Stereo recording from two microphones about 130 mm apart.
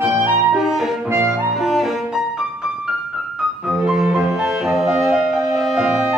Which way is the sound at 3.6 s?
5° right (ahead or behind).